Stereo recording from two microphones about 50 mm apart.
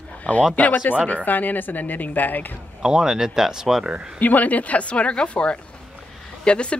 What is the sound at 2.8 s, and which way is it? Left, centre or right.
Speech, centre.